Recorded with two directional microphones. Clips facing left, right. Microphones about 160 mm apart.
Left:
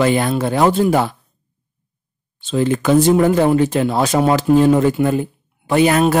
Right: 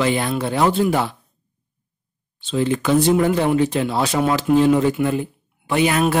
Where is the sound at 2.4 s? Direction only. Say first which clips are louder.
Left 3 dB; 45° left (ahead or behind).